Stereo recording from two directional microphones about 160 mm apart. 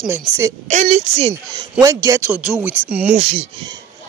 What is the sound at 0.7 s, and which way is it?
Speech, 45° right (ahead or behind).